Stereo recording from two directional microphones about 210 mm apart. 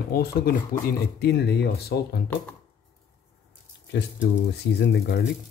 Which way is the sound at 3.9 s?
55° left (ahead or behind).